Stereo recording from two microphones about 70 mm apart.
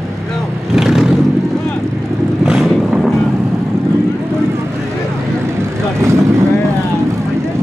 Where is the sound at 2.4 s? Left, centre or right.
Centre.